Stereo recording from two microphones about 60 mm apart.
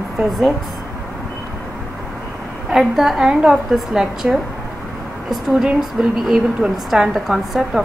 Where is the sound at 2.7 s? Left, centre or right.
Centre.